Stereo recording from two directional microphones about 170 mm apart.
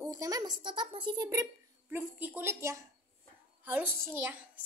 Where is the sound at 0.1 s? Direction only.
20° right (ahead or behind).